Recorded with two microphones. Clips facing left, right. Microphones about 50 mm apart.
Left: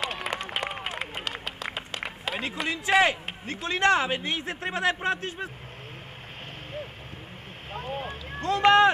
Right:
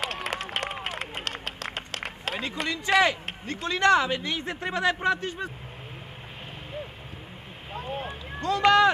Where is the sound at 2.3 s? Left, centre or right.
Centre.